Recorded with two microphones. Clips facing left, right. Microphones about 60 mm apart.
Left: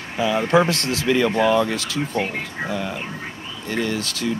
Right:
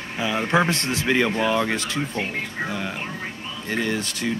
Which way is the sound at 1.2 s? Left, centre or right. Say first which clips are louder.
Left 4 dB; centre.